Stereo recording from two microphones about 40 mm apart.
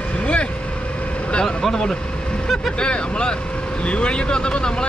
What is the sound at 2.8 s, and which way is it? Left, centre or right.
Speech, left.